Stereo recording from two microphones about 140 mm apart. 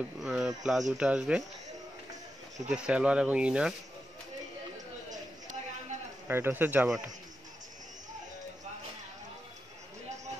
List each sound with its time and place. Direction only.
0.2 s speech: 5° right (ahead or behind)
2.7 s speech: 10° right (ahead or behind)
5.1 s a sound: 60° right (ahead or behind)
6.2 s speech: 15° right (ahead or behind)